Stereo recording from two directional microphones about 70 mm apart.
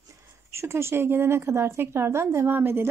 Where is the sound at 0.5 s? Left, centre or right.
Right.